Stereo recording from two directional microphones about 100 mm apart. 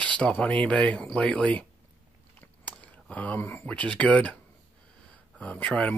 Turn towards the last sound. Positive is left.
turn(degrees=10)  # may be behind; listen again after turning